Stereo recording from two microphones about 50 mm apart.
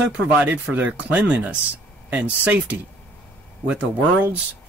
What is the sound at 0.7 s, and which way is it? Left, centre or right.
Speech, right.